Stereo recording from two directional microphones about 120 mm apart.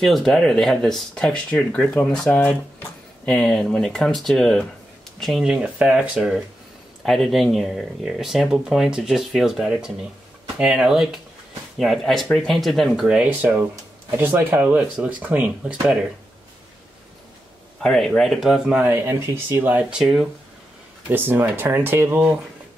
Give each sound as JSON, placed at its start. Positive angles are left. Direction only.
{"t": 0.0, "sound": "speech", "side_deg": 0}
{"t": 17.8, "sound": "speech", "side_deg": 5}
{"t": 18.8, "sound": "speech", "side_deg": -20}
{"t": 21.1, "sound": "speech", "side_deg": -15}